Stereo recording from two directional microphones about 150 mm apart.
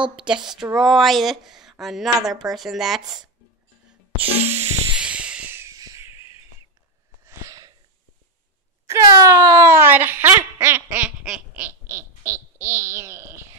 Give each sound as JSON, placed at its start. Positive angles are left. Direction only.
{"t": 0.1, "sound": "a woman's voice", "side_deg": -5}
{"t": 3.0, "sound": "speech", "side_deg": -30}
{"t": 4.3, "sound": "music", "side_deg": -45}
{"t": 4.9, "sound": "a sound", "side_deg": -5}
{"t": 7.2, "sound": "sneeze", "side_deg": -20}
{"t": 8.8, "sound": "speech", "side_deg": -20}
{"t": 11.9, "sound": "speech", "side_deg": -20}